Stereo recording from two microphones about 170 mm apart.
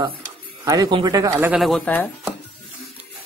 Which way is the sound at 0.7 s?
20° right (ahead or behind).